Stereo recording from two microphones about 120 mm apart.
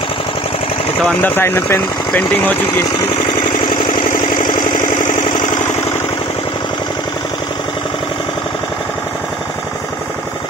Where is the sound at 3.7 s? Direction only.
40° left (ahead or behind).